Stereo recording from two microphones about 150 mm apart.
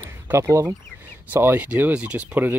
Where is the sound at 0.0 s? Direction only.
15° right (ahead or behind).